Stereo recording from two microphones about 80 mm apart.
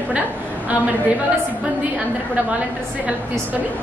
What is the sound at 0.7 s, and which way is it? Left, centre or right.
A woman's voice, right.